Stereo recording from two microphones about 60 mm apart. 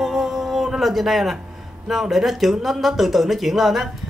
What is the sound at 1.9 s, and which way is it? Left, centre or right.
Speech, centre.